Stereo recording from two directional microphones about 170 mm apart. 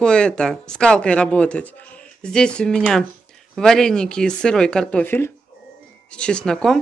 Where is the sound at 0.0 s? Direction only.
5° left (ahead or behind).